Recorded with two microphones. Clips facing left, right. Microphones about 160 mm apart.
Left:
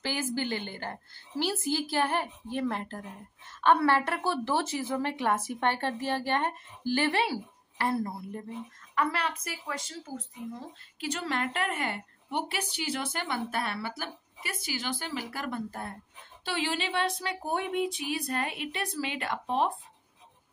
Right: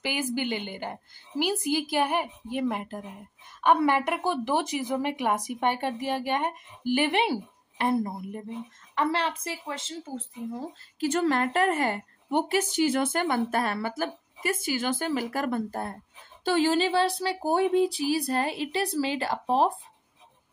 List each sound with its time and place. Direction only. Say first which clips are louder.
0.0 s a woman's voice: right 2 dB; 15° right (ahead or behind); by 19.7 s 35° right (ahead or behind)